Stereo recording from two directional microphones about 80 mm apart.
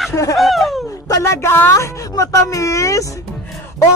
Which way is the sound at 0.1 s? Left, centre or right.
Left.